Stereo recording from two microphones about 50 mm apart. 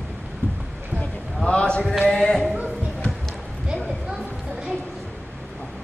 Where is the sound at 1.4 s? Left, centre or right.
Centre.